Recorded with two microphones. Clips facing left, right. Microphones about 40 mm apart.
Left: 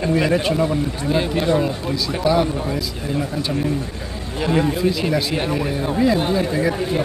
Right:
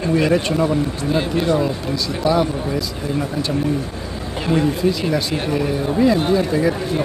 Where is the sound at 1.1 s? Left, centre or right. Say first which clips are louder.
Even; centre.